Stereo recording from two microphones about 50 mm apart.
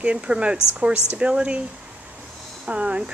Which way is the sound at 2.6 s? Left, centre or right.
Right.